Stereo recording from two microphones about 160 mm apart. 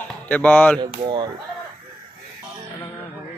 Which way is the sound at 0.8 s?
25° right (ahead or behind).